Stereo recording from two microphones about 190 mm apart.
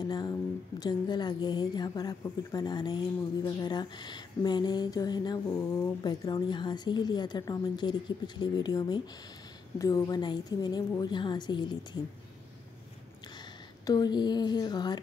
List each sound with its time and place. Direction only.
0.0 s a woman's voice: 20° left (ahead or behind)
13.8 s a woman's voice: 20° left (ahead or behind)